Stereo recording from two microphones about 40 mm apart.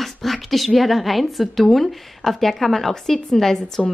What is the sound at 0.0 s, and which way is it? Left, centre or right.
A woman's voice, centre.